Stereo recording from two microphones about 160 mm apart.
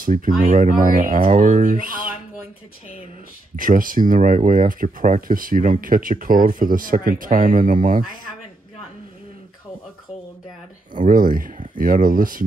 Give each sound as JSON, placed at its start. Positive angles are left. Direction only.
{"t": 0.0, "sound": "speech", "side_deg": -55}
{"t": 3.5, "sound": "speech", "side_deg": -60}
{"t": 11.0, "sound": "speech", "side_deg": -60}